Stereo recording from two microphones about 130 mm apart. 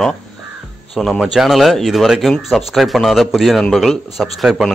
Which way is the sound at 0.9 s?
Centre (ahead or behind).